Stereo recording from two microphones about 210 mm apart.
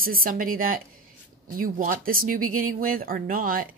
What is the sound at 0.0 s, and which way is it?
Speech, 40° right (ahead or behind).